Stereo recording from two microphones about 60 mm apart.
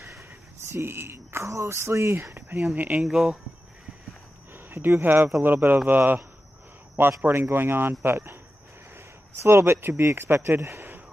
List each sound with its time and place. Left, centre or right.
0.7 s speech: right
2.6 s speech: right
3.1 s speech: centre
4.6 s speech: right
7.2 s speech: right